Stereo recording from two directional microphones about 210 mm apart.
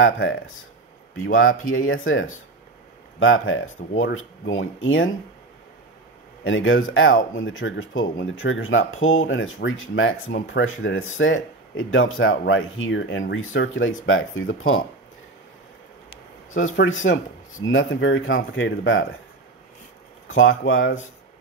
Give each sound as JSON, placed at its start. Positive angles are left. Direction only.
{"t": 0.0, "sound": "speech", "side_deg": 70}
{"t": 6.4, "sound": "speech", "side_deg": 65}
{"t": 16.1, "sound": "a sound", "side_deg": 40}
{"t": 17.0, "sound": "speech", "side_deg": 65}
{"t": 20.2, "sound": "speech", "side_deg": 70}